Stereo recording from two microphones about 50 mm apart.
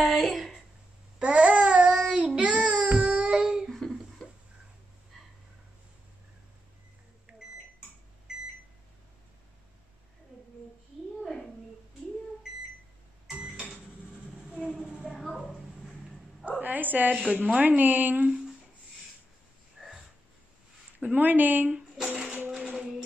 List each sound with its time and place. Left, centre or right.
0.0 s a sound: centre
1.2 s baby cry: right
2.4 s child singing: right
3.7 s a sound: centre
7.3 s microwave oven: right
14.5 s a sound: centre
15.3 s bow-wow: centre
16.6 s bow-wow: right
17.3 s speech: right
19.8 s a sound: centre
21.0 s speech: right
21.9 s music: centre